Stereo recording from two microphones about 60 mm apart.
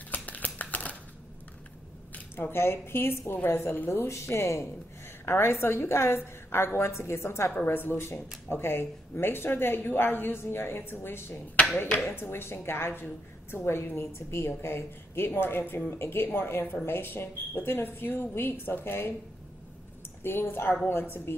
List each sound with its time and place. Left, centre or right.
0.1 s a sound: left
2.1 s a woman's voice: left
20.2 s speech: left